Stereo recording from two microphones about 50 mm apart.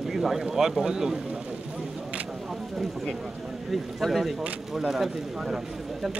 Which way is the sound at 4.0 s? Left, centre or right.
Centre.